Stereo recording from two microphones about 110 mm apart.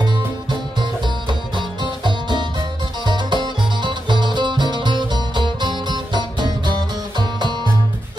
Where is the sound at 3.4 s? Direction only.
45° right (ahead or behind).